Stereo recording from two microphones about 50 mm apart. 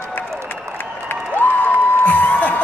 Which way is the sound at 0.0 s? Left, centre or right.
Left.